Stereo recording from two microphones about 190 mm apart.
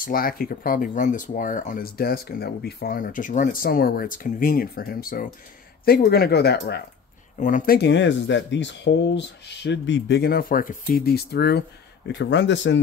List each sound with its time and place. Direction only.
0.0 s speech: 50° left (ahead or behind)
7.3 s speech: 45° left (ahead or behind); by 12.7 s 70° left (ahead or behind)